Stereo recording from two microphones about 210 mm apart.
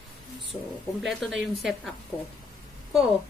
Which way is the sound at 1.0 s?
Centre (ahead or behind).